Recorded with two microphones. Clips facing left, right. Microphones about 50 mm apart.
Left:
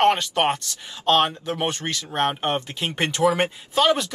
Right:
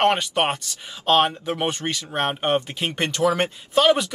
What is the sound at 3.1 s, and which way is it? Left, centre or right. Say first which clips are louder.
Speech: left 1 dB; left.